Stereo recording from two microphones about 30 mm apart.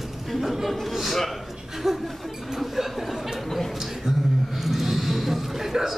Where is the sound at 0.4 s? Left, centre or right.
Centre.